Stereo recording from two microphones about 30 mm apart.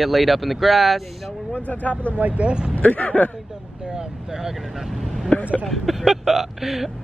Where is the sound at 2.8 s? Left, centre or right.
Left.